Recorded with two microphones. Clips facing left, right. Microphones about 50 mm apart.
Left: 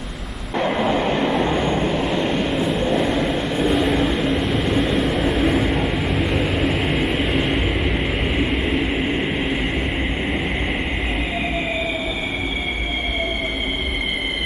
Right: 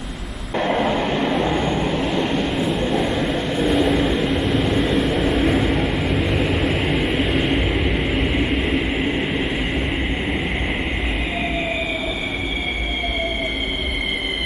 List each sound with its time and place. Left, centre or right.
0.6 s vehicle: centre
0.9 s train: centre
1.2 s train: centre